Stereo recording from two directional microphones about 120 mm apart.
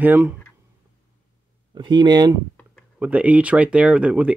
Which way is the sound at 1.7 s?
40° right (ahead or behind).